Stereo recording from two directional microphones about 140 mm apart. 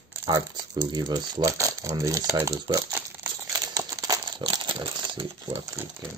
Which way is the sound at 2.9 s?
15° right (ahead or behind).